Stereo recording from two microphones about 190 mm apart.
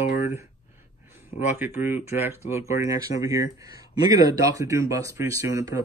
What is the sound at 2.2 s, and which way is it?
Speech, 10° right (ahead or behind).